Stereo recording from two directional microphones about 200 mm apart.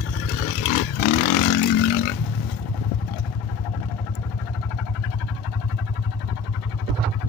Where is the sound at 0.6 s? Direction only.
40° left (ahead or behind).